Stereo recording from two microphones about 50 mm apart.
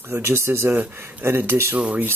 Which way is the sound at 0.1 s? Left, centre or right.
Right.